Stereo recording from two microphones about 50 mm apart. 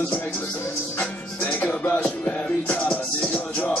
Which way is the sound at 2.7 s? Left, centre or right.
Left.